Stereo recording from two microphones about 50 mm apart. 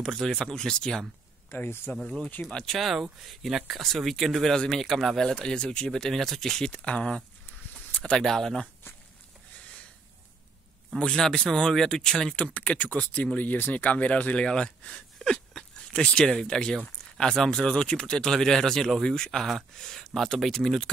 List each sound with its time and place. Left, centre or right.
0.0 s speech: centre
1.5 s speech: left
1.9 s speech: left
2.6 s speech: centre
6.7 s speech: left
8.2 s speech: centre
11.0 s speech: centre
12.6 s speech: left; by 20.9 s centre